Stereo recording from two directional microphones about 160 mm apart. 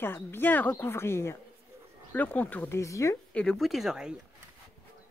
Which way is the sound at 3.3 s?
Centre (ahead or behind).